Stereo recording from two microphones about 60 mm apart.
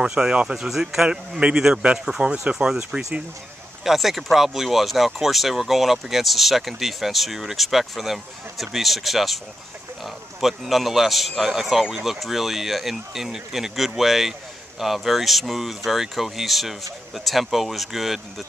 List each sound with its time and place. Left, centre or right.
0.0 s a man's voice: centre
0.7 s a man's voice: centre